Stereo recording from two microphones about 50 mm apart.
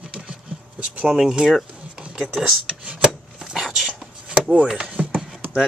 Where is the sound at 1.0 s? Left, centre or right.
Centre.